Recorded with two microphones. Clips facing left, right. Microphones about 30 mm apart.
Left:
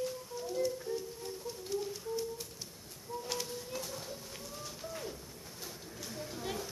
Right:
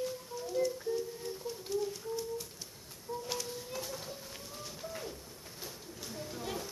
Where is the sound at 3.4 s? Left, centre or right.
Centre.